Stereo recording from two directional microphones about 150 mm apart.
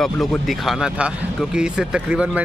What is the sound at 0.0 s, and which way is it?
Speech, centre (ahead or behind).